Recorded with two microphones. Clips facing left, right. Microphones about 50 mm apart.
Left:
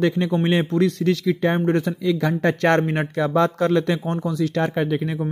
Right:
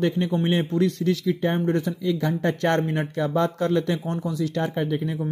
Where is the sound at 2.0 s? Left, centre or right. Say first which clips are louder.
Left 3 dB; left.